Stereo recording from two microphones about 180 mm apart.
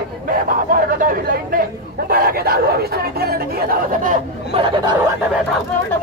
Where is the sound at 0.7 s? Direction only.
50° right (ahead or behind).